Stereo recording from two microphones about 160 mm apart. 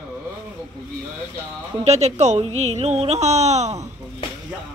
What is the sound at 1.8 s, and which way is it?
A woman's voice, 45° right (ahead or behind).